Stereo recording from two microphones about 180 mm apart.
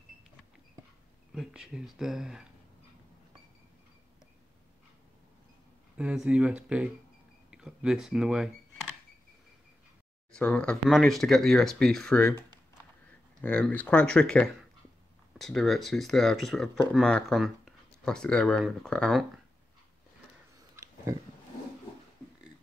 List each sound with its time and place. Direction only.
1.3 s speech: centre (ahead or behind)
5.9 s speech: 5° right (ahead or behind)
10.3 s speech: 5° left (ahead or behind)
13.4 s speech: 5° left (ahead or behind)
20.7 s a sound: 15° right (ahead or behind)